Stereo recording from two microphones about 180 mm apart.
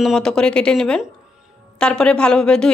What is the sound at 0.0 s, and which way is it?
Speech, centre (ahead or behind).